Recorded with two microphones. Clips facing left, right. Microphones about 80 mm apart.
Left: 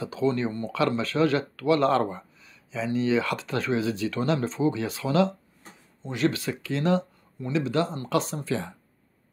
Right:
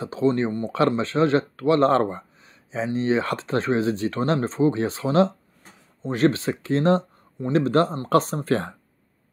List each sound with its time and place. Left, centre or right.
0.0 s speech: right
0.5 s speech: right
0.7 s speech: right